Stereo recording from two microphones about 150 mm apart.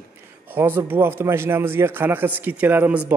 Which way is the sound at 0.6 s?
15° right (ahead or behind).